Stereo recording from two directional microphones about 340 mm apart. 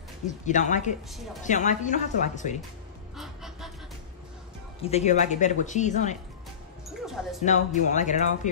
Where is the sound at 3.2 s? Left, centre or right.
Centre.